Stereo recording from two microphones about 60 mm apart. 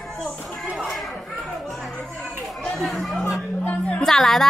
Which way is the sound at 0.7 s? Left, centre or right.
Centre.